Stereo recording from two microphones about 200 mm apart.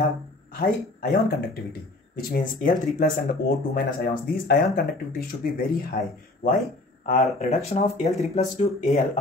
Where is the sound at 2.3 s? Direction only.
45° left (ahead or behind).